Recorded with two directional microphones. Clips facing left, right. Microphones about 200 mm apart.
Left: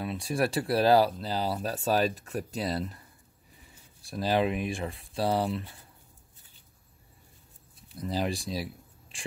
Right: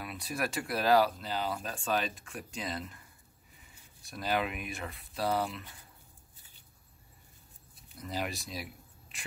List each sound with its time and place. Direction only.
0.0 s speech: 30° left (ahead or behind)
4.0 s speech: 30° left (ahead or behind)
8.0 s speech: 30° left (ahead or behind)